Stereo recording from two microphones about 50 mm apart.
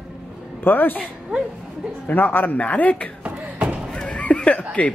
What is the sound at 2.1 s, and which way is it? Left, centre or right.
Speech, left.